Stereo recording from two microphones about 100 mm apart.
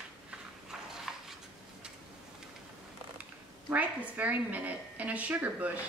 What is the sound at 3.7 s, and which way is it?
A woman's voice, 15° right (ahead or behind).